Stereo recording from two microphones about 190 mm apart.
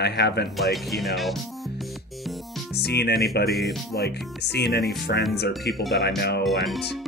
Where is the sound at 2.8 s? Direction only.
60° left (ahead or behind).